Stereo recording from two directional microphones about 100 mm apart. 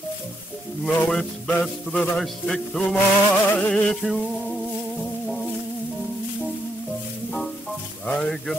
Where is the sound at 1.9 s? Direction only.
5° left (ahead or behind).